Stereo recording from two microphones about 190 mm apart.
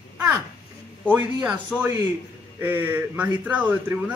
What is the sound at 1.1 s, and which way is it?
Speech, 10° right (ahead or behind).